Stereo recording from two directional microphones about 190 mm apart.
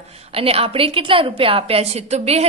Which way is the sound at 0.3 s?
30° right (ahead or behind).